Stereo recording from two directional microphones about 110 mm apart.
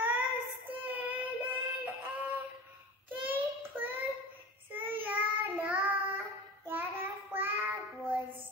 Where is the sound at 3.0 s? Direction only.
15° right (ahead or behind).